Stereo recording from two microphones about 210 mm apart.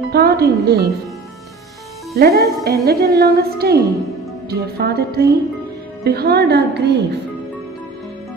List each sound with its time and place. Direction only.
0.1 s speech: 50° right (ahead or behind)
2.1 s speech: 50° right (ahead or behind)